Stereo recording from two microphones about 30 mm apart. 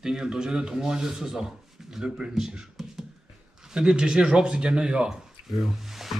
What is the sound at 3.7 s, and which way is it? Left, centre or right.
Speech, right.